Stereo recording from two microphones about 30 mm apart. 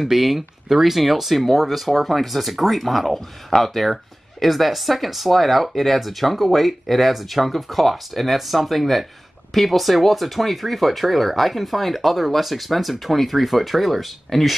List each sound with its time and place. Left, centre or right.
0.0 s speech: centre